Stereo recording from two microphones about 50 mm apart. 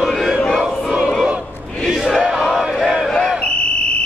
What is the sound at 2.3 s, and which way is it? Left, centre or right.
Choir, centre.